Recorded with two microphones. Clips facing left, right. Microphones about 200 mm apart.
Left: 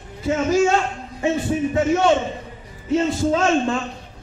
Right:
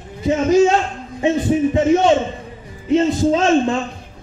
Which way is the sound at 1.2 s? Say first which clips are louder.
Right 5 dB; 20° right (ahead or behind).